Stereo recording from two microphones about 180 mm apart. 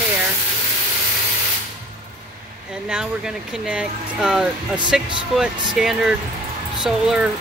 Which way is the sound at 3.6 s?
5° right (ahead or behind).